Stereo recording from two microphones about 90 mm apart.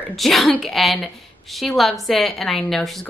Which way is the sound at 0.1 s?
Centre (ahead or behind).